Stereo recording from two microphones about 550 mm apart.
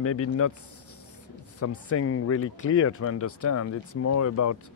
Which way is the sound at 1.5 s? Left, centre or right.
Left.